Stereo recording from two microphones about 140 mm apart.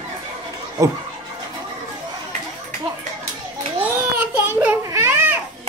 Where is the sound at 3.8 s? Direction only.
15° right (ahead or behind).